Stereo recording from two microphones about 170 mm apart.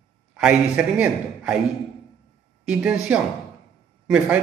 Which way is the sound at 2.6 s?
5° right (ahead or behind).